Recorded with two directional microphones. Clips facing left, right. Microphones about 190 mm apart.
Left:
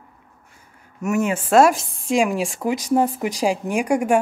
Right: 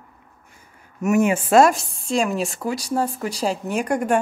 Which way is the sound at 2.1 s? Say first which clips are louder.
Left 2 dB; 10° left (ahead or behind).